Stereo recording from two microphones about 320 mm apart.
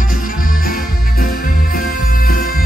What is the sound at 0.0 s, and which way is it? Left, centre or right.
Music, left.